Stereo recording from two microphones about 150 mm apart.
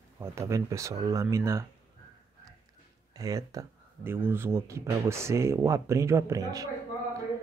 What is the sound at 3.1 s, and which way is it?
Speech, 20° right (ahead or behind).